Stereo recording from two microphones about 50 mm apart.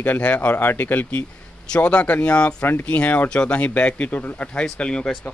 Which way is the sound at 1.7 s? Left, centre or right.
Left.